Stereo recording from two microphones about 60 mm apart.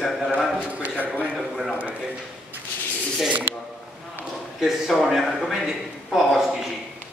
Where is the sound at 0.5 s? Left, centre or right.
Right.